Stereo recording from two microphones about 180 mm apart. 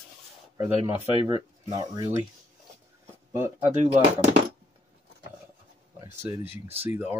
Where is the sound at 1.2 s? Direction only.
20° right (ahead or behind).